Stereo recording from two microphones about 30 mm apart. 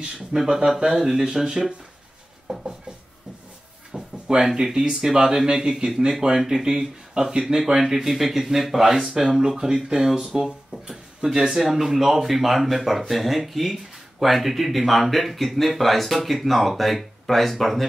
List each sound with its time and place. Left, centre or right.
0.3 s speech: right
2.5 s a sound: right
3.9 s drawer open or close: right
4.4 s speech: centre